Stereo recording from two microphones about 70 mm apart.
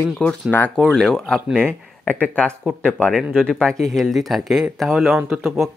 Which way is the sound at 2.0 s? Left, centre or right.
Left.